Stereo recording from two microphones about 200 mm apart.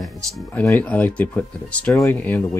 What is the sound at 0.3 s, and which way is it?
Speech, 10° left (ahead or behind).